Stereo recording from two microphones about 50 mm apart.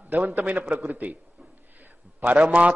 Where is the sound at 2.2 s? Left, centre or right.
Right.